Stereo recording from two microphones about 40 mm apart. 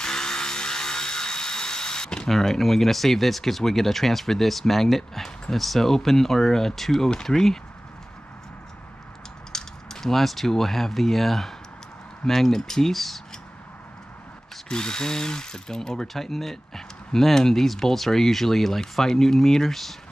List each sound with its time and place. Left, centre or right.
0.0 s a sound: centre
2.2 s speech: centre
9.5 s speech: centre
14.7 s speech: centre